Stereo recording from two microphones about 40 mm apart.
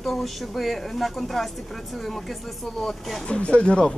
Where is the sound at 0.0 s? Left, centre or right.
Centre.